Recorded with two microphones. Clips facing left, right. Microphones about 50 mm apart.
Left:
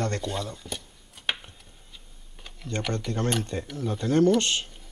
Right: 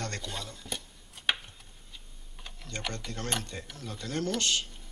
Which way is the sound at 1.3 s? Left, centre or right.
Centre.